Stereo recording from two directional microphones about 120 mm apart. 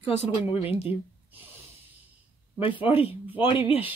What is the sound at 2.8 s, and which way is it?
Speech, 50° left (ahead or behind).